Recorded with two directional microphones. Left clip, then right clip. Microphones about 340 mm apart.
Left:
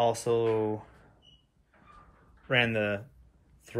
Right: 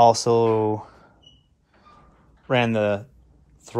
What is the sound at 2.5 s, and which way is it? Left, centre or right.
Speech, centre.